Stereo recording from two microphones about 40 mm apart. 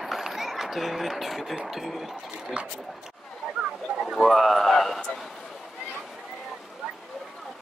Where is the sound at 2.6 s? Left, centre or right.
Right.